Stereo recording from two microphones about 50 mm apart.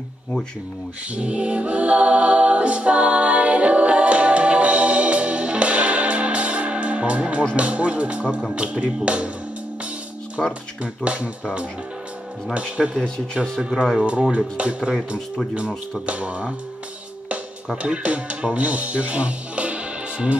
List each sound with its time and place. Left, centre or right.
1.1 s a capella: right
7.5 s speech: right
10.4 s speech: centre
11.0 s speech: right
12.5 s speech: right
16.1 s speech: right
17.8 s speech: right